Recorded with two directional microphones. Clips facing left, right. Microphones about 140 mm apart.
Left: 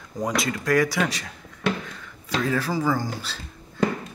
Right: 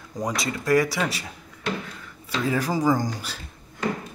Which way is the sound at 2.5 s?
15° right (ahead or behind).